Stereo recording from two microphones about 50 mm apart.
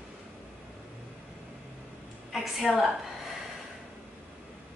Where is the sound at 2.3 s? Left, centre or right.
Centre.